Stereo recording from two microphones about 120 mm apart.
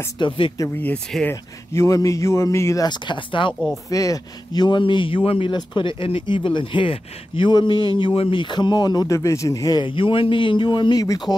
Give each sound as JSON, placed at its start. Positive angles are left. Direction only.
{"t": 0.2, "sound": "speech", "side_deg": 40}
{"t": 0.7, "sound": "speech", "side_deg": 15}
{"t": 1.3, "sound": "speech", "side_deg": 25}
{"t": 2.9, "sound": "speech", "side_deg": 40}
{"t": 3.9, "sound": "speech", "side_deg": 30}